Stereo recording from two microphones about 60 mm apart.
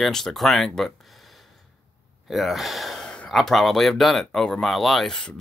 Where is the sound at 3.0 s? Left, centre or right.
Centre.